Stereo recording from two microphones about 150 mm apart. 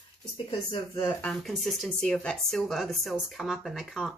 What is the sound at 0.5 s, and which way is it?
Speech, 35° left (ahead or behind).